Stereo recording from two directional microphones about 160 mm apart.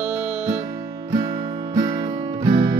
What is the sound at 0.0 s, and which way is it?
Music, 5° right (ahead or behind).